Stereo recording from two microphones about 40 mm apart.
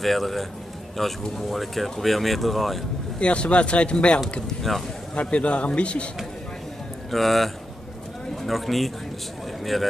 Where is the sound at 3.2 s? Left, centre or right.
Left.